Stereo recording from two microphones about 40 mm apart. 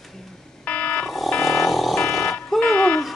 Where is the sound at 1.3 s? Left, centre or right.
Centre.